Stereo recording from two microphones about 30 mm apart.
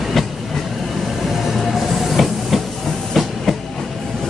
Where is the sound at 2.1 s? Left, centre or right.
Centre.